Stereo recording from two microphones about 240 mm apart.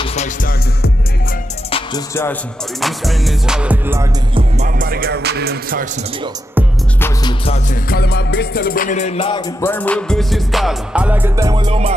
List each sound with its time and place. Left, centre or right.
0.0 s music: left
1.7 s music: centre
2.8 s music: centre
4.4 s music: right
7.0 s music: left
9.6 s music: centre; by 11.9 s right